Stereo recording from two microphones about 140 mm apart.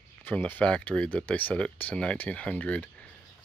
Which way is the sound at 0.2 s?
10° left (ahead or behind).